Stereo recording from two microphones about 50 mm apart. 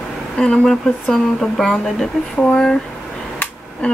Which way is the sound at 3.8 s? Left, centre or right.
Left.